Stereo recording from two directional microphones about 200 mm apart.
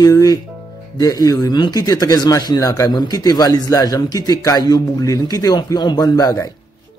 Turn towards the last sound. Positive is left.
turn(degrees=15)  # may be behind; listen again after turning